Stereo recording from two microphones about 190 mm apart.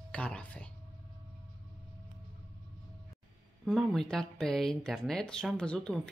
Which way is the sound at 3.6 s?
Centre (ahead or behind).